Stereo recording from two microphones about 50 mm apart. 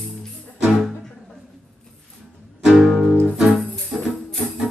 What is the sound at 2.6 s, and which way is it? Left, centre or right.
Music, centre.